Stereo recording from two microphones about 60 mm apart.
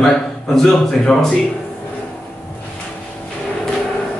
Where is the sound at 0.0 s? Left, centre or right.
Centre.